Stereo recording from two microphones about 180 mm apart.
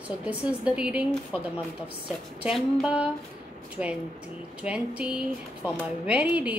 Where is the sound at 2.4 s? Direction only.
5° right (ahead or behind).